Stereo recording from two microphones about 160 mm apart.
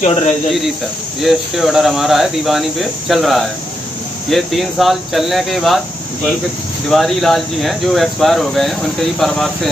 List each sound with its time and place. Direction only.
0.0 s speech: 45° left (ahead or behind)
1.2 s speech: centre (ahead or behind)
6.9 s speech: centre (ahead or behind)